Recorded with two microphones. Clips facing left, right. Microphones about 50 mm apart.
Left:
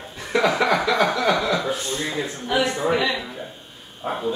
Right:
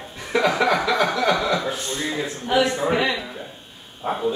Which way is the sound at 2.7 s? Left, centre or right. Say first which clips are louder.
Even; centre.